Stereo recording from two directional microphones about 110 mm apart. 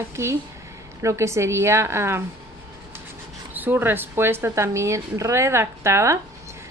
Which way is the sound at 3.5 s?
15° right (ahead or behind).